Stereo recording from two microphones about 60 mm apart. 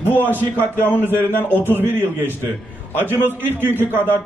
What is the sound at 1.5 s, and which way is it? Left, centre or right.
A man's voice, right.